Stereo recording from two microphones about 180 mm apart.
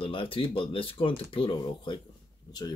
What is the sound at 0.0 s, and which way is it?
Speech, 30° left (ahead or behind).